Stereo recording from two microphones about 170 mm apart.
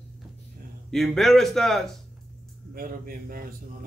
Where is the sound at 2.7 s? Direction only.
60° right (ahead or behind).